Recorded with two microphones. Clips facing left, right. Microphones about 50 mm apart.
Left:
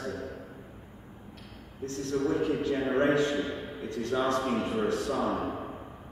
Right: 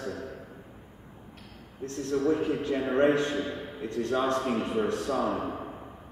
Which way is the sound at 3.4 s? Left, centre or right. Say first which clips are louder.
Even; centre.